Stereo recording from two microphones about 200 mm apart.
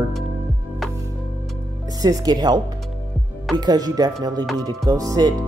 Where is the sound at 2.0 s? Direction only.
20° right (ahead or behind).